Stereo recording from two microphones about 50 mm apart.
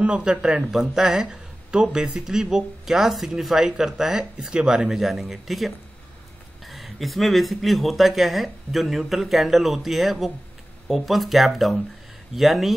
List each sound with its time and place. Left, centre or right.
0.0 s a man's voice: centre
0.7 s speech: centre
4.9 s speech: centre